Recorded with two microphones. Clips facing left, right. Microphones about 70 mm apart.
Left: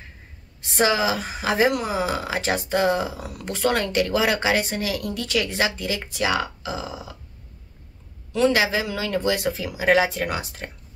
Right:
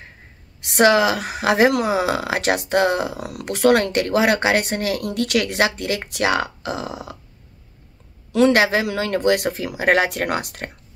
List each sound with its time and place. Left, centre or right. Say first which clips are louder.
0.6 s speech: right 6 dB; right
8.3 s speech: right 4 dB; right